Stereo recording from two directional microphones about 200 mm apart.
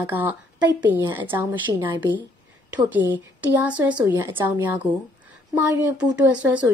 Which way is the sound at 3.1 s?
10° right (ahead or behind).